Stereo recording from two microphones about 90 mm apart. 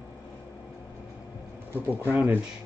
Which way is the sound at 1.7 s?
25° right (ahead or behind).